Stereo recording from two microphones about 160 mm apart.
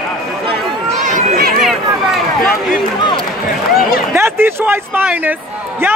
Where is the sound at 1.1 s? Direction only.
65° right (ahead or behind).